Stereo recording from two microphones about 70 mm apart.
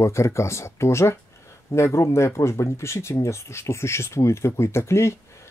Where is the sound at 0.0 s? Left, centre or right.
Left.